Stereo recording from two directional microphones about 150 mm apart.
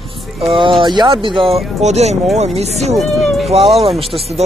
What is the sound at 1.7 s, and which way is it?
Speech, 45° right (ahead or behind).